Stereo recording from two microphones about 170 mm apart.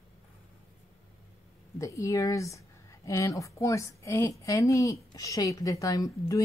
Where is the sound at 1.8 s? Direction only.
20° left (ahead or behind).